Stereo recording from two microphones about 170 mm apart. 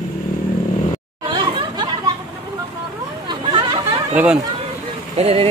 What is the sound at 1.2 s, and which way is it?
Chatter, 30° right (ahead or behind).